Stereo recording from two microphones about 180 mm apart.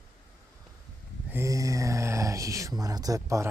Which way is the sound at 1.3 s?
15° right (ahead or behind).